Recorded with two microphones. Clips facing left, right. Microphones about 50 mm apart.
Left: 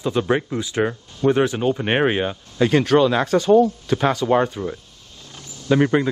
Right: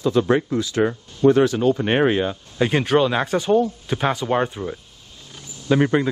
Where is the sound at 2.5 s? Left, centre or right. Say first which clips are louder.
Left 2 dB; centre.